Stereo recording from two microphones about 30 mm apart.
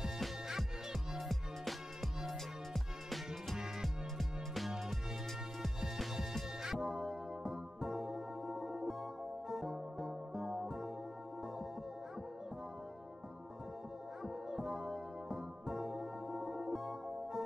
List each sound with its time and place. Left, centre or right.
1.3 s music: centre
6.6 s music: centre
14.2 s music: centre